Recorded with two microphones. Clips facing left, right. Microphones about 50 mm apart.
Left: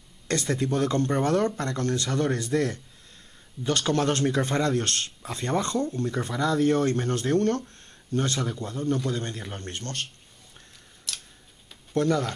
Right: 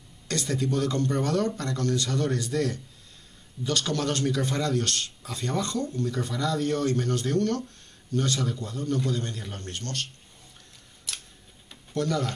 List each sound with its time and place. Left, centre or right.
0.3 s a man's voice: left
11.1 s scissors: centre
11.9 s speech: left